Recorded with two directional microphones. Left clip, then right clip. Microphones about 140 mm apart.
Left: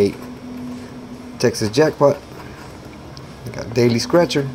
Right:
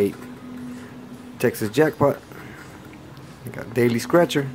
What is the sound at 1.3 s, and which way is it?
Speech, 25° right (ahead or behind).